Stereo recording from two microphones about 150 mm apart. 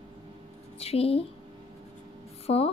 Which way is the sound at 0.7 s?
40° left (ahead or behind).